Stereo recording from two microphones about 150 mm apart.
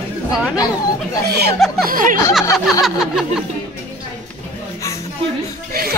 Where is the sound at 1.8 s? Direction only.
70° right (ahead or behind).